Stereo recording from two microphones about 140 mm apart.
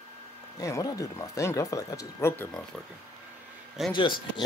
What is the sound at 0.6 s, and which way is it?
Speech, 25° left (ahead or behind).